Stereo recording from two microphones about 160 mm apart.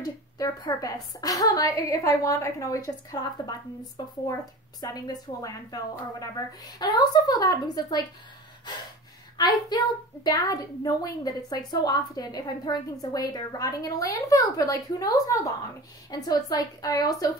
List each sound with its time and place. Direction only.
0.0 s a woman's voice: 25° left (ahead or behind)
9.4 s a woman's voice: 25° left (ahead or behind)